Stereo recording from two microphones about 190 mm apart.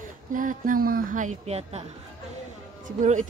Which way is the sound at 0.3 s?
45° right (ahead or behind).